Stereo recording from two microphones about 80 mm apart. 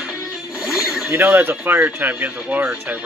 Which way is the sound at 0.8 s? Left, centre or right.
Centre.